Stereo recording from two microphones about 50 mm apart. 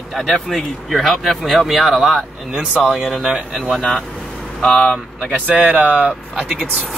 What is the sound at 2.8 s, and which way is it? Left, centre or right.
Speech, centre.